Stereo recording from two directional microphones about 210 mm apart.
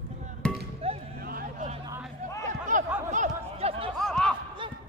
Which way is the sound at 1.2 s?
40° right (ahead or behind).